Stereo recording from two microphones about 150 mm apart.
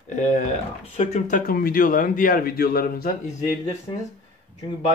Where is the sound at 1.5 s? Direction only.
85° left.